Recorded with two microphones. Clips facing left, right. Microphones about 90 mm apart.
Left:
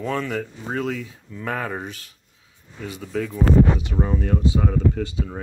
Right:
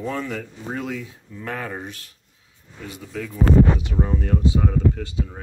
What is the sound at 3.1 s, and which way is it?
Speech, 20° left (ahead or behind).